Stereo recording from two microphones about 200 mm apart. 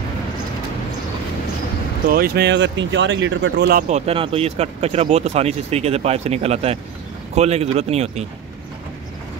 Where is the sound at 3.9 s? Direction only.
30° right (ahead or behind).